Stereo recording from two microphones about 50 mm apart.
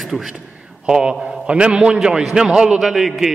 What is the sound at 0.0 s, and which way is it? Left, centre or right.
A man's voice, centre.